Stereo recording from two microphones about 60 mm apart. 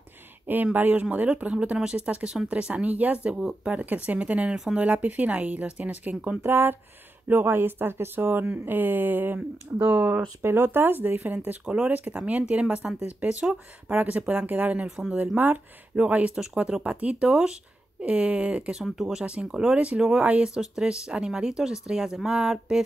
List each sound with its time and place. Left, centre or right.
0.7 s speech: right
3.7 s speech: right
6.4 s speech: right
10.4 s speech: right
14.9 s speech: centre
15.1 s speech: right
18.9 s speech: centre